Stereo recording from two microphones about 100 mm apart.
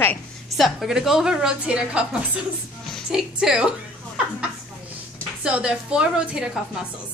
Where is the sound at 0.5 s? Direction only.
Centre (ahead or behind).